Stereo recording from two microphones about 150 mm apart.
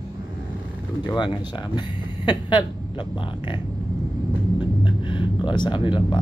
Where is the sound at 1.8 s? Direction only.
30° left (ahead or behind).